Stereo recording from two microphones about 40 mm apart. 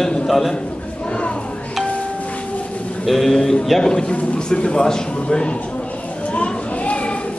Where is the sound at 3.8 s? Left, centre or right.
Centre.